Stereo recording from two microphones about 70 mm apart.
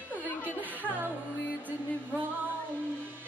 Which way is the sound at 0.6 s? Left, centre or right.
Right.